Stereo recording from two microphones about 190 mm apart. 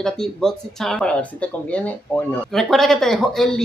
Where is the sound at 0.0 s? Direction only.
Centre (ahead or behind).